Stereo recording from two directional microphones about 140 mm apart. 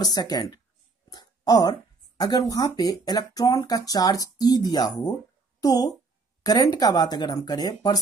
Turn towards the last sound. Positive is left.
turn(degrees=25)  # may be behind; listen again after turning